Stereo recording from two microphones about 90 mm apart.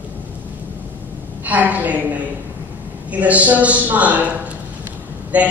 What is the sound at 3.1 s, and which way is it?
A man's voice, 15° right (ahead or behind).